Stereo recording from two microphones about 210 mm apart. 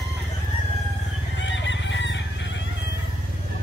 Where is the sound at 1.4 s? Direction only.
60° left (ahead or behind).